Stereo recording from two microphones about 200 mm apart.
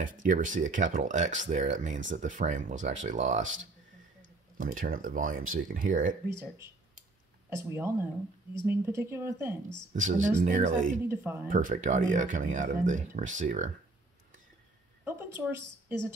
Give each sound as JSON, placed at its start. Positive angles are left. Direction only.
{"t": 0.0, "sound": "speech", "side_deg": -40}
{"t": 6.3, "sound": "speech", "side_deg": -15}
{"t": 9.9, "sound": "speech", "side_deg": -40}
{"t": 11.1, "sound": "speech", "side_deg": -10}
{"t": 11.4, "sound": "speech", "side_deg": -40}
{"t": 15.0, "sound": "speech", "side_deg": -10}